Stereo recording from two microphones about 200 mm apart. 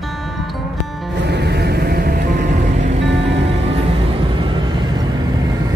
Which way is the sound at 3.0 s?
60° right (ahead or behind).